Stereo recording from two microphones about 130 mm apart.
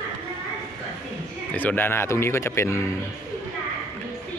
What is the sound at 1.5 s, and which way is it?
Speech, 15° left (ahead or behind).